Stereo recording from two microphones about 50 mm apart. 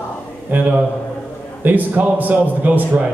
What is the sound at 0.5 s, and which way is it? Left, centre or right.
A man's voice, right.